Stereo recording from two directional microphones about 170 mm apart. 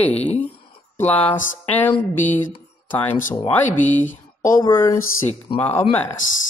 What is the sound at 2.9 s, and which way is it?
Speech, 10° left (ahead or behind).